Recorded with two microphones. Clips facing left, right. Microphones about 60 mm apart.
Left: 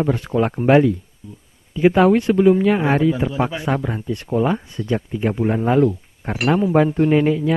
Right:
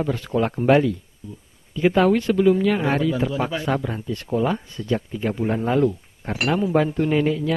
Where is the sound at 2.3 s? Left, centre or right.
Left.